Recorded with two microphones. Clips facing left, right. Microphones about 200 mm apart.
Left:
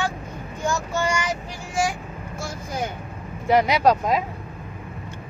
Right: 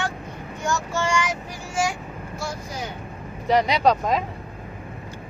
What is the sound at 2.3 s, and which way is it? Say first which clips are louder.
Vehicle: left 2 dB; 50° left (ahead or behind).